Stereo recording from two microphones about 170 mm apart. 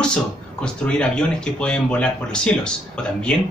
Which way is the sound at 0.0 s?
5° left (ahead or behind).